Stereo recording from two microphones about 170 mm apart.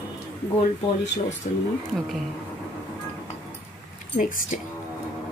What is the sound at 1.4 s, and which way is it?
Speech, 60° left (ahead or behind).